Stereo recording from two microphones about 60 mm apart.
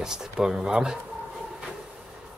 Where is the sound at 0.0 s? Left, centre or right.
Centre.